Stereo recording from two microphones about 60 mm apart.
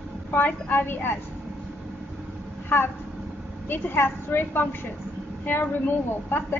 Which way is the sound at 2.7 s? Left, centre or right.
Left.